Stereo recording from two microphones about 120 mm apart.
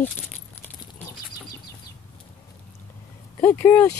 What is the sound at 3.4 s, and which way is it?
Speech, 20° left (ahead or behind).